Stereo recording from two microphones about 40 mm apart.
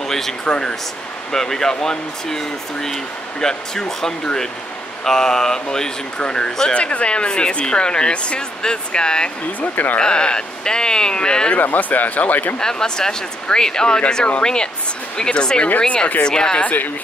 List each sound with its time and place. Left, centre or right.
0.0 s a sound: centre
0.5 s speech: left
1.3 s speech: centre
9.6 s speech: left
9.9 s speech: left
11.5 s speech: left
12.5 s speech: centre
16.6 s speech: left